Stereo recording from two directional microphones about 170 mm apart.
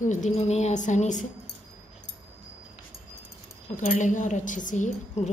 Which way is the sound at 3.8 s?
45° left (ahead or behind).